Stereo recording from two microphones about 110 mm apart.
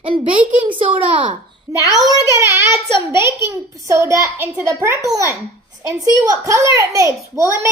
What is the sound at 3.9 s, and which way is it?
A child's voice, 25° right (ahead or behind).